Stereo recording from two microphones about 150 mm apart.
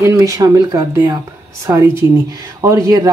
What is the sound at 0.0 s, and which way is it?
Speech, 20° right (ahead or behind).